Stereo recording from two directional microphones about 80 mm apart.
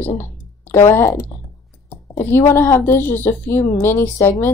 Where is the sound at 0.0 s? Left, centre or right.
Left.